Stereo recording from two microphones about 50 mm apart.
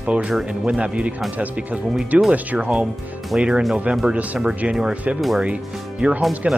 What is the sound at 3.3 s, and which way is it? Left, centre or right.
Speech, centre.